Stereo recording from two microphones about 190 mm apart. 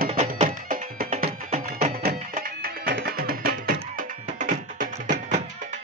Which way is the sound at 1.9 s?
50° right (ahead or behind).